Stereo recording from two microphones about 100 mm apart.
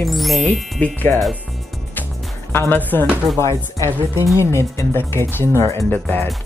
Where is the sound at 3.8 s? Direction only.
30° right (ahead or behind).